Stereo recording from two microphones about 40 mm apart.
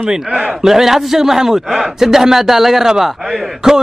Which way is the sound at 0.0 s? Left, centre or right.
Right.